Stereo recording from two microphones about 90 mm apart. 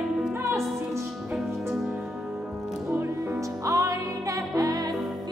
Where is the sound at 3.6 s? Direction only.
35° right (ahead or behind).